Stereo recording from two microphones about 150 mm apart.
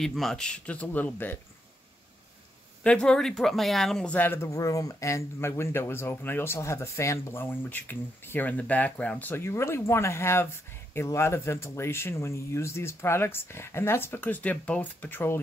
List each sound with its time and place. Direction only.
0.0 s speech: centre (ahead or behind)
2.8 s speech: 5° left (ahead or behind)